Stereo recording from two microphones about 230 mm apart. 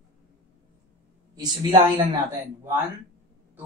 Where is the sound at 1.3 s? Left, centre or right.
Centre.